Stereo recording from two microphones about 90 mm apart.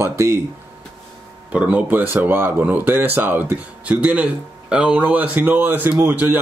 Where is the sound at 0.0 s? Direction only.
30° right (ahead or behind).